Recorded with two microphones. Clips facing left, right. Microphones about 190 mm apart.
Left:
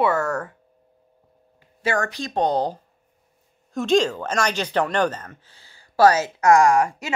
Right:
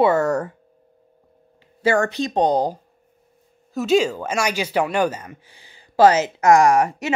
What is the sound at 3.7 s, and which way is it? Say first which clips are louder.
Speech: right 1 dB; 5° right (ahead or behind).